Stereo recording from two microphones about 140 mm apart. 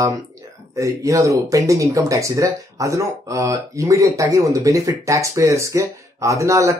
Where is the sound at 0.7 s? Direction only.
20° right (ahead or behind).